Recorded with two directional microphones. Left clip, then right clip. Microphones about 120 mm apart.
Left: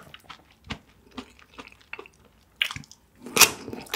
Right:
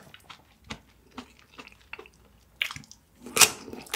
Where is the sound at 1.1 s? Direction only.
20° left (ahead or behind).